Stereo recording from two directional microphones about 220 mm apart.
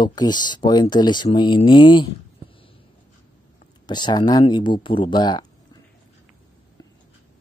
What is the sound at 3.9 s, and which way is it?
Speech, 20° left (ahead or behind).